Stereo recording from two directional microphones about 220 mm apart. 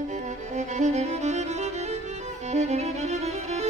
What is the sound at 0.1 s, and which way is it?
Music, 35° right (ahead or behind).